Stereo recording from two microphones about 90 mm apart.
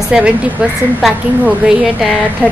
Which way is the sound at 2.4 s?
20° left (ahead or behind).